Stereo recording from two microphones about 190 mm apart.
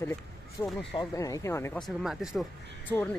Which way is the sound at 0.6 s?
15° left (ahead or behind).